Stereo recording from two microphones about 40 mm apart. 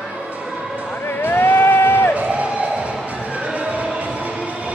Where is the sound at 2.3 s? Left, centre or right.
Right.